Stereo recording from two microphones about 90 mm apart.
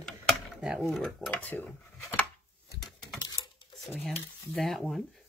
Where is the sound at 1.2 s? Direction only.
20° left (ahead or behind).